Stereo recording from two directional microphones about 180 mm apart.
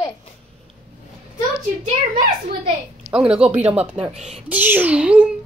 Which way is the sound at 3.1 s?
5° right (ahead or behind).